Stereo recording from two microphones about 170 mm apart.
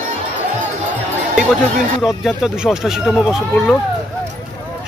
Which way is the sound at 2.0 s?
5° right (ahead or behind).